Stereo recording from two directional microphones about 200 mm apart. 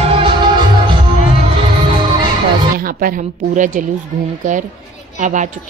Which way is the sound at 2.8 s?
45° right (ahead or behind).